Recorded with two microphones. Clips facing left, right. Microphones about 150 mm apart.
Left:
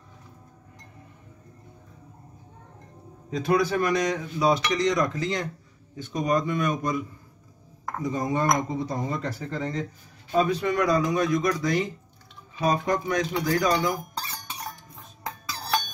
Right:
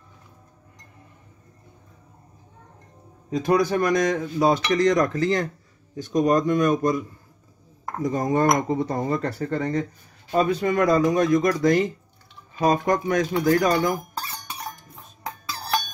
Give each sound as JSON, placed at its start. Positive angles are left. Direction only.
{"t": 3.3, "sound": "speech", "side_deg": -45}